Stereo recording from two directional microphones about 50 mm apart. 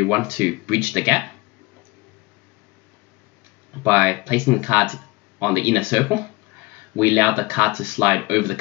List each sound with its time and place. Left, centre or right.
0.0 s speech: right
3.8 s speech: right